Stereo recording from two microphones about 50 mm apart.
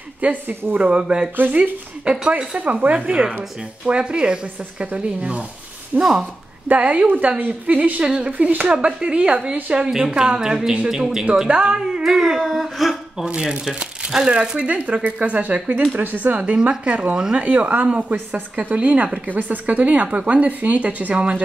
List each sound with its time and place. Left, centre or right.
0.2 s a woman's voice: right
0.7 s a woman's voice: centre
6.7 s a woman's voice: right
8.0 s a woman's voice: centre
8.4 s a woman's voice: right; by 11.2 s centre
11.4 s a woman's voice: centre
13.3 s speech: centre
15.9 s a woman's voice: right
16.3 s a woman's voice: right